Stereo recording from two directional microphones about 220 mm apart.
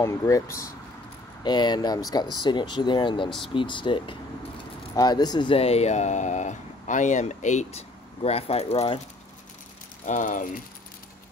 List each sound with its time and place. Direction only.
0.0 s speech: 15° left (ahead or behind)
3.3 s speech: centre (ahead or behind)
3.5 s speech: 20° left (ahead or behind)
10.0 s speech: 35° left (ahead or behind)